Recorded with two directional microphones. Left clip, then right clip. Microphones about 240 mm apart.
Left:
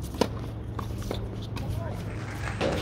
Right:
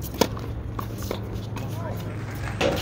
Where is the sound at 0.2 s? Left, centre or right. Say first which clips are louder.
Right 4 dB; centre.